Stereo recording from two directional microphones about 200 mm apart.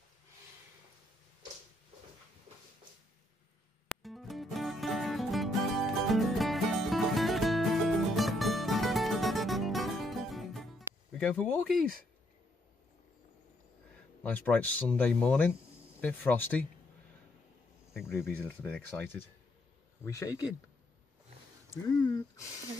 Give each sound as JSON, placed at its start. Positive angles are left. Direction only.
{"t": 3.9, "sound": "music", "side_deg": 0}
{"t": 14.2, "sound": "speech", "side_deg": 10}
{"t": 18.3, "sound": "speech", "side_deg": 10}
{"t": 21.8, "sound": "speech", "side_deg": 15}